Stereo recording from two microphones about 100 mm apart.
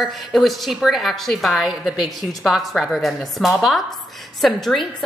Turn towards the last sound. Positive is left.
turn(degrees=0)  # may be behind; listen again after turning